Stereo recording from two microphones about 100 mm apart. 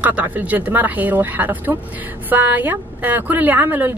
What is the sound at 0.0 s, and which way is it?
A woman's voice, 15° right (ahead or behind).